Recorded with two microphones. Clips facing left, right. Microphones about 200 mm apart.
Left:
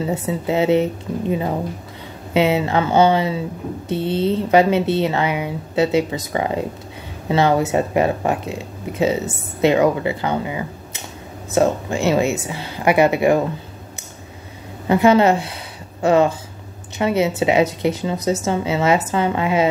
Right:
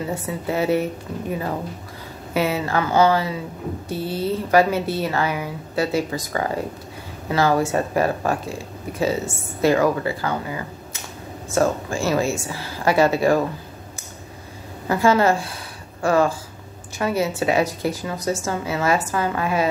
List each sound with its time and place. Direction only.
0.3 s speech: 20° left (ahead or behind)
2.3 s speech: 20° left (ahead or behind)
14.9 s a woman's voice: 20° left (ahead or behind)